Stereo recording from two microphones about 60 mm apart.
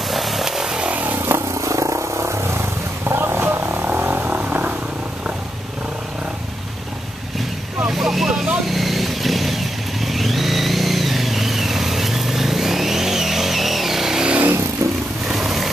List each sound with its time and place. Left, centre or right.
0.1 s vehicle: centre
0.7 s vehicle: right
1.2 s vehicle: right
1.6 s a sound: right
7.9 s vehicle: centre
14.8 s vehicle: right
15.3 s vehicle: centre